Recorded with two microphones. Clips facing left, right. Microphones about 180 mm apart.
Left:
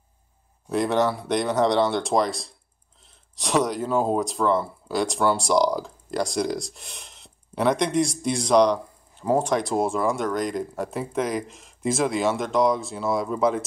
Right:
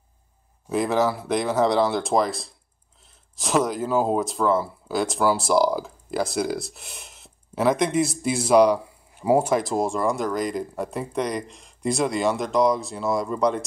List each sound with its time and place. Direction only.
0.7 s speech: centre (ahead or behind)